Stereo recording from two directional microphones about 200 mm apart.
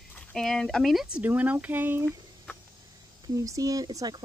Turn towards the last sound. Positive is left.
turn(degrees=-20)  # may be behind; listen again after turning